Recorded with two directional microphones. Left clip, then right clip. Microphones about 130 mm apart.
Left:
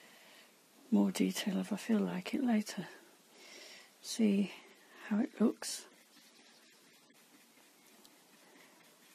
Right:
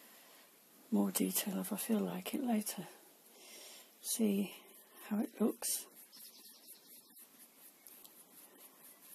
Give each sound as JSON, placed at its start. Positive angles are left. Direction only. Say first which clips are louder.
{"t": 0.9, "sound": "speech", "louder": "left 3 dB", "side_deg": 25}
{"t": 3.6, "sound": "a sound", "louder": "left 1 dB", "side_deg": 25}
{"t": 5.0, "sound": "speech", "louder": "left 3 dB", "side_deg": 30}